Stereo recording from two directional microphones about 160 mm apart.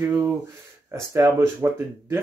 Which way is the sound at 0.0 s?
15° right (ahead or behind).